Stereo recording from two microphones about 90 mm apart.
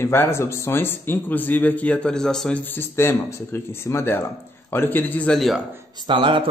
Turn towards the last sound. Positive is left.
turn(degrees=-65)  # may be behind; listen again after turning